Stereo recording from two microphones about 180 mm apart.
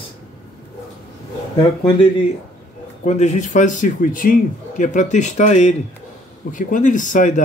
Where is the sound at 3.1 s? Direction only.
40° left (ahead or behind).